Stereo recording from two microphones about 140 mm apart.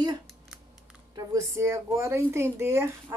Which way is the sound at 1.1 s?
20° right (ahead or behind).